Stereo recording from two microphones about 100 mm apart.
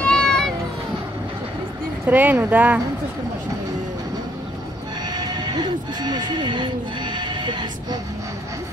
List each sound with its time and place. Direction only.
0.0 s vehicle: 10° left (ahead or behind)
2.0 s speech: 15° right (ahead or behind)
5.1 s neigh: 45° right (ahead or behind)